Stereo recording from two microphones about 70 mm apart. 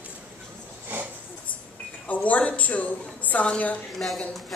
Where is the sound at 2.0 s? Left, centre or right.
Left.